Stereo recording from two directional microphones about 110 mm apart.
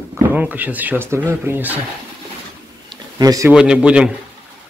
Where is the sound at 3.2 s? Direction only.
35° right (ahead or behind).